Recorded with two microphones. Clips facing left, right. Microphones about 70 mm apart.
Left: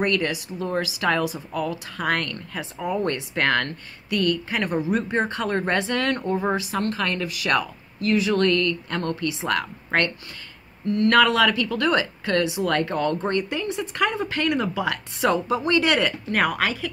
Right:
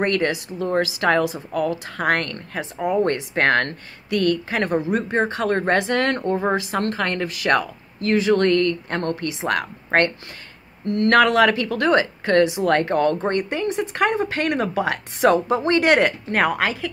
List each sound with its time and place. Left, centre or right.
0.0 s a woman's voice: right
2.8 s a woman's voice: right
3.1 s a woman's voice: right
6.2 s speech: right
6.9 s a woman's voice: right
14.5 s a woman's voice: right